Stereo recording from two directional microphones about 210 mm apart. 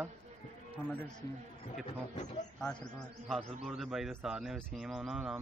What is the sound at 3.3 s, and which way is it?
Speech, centre (ahead or behind).